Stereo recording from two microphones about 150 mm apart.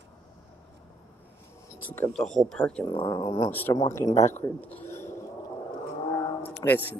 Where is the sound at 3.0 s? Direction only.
20° left (ahead or behind).